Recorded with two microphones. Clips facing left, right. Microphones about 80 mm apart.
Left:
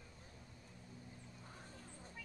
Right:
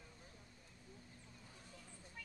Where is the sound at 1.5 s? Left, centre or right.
Left.